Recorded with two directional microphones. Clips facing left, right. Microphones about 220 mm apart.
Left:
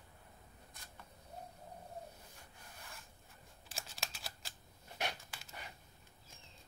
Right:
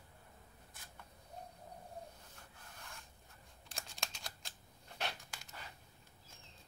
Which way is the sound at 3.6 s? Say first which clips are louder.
Even; 5° left (ahead or behind).